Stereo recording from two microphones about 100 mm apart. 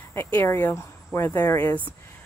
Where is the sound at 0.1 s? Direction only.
20° left (ahead or behind).